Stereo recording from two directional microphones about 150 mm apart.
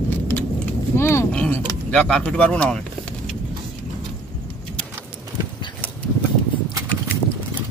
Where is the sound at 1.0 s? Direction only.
15° left (ahead or behind).